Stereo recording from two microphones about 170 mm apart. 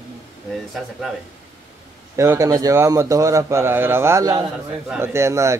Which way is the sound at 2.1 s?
20° right (ahead or behind).